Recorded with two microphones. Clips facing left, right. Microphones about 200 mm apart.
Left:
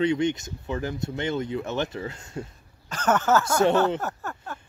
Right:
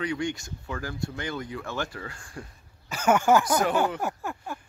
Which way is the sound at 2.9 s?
10° right (ahead or behind).